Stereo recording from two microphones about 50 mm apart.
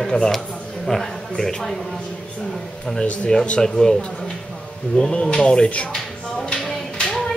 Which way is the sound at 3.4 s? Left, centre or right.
Centre.